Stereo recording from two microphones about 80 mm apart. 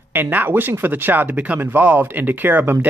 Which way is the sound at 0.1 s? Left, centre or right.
Right.